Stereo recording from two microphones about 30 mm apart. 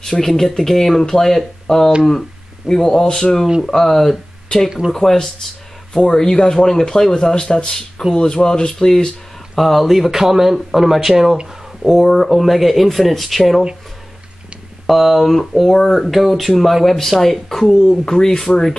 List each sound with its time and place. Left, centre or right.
0.0 s speech: centre
4.6 s speech: centre
4.9 s speech: centre
9.6 s speech: centre
14.9 s speech: centre
15.7 s speech: centre
16.0 s speech: centre